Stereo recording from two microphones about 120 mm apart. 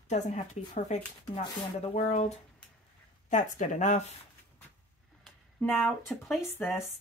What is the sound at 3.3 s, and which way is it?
Speech, 90° left.